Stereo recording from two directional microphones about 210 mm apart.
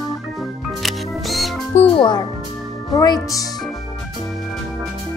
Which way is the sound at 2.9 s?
15° left (ahead or behind).